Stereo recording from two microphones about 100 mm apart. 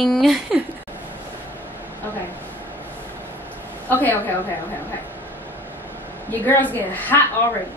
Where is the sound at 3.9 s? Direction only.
20° left (ahead or behind).